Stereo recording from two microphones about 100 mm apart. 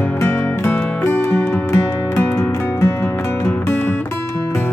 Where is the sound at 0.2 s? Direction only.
25° left (ahead or behind).